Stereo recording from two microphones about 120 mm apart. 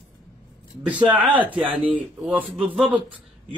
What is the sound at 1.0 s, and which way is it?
A man's voice, 15° right (ahead or behind).